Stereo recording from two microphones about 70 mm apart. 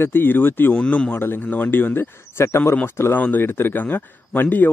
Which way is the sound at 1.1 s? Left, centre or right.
Left.